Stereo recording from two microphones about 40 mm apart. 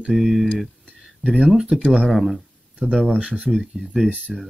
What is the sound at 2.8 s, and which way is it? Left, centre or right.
Speech, right.